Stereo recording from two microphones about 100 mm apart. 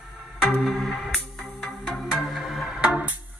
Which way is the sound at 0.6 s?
5° left (ahead or behind).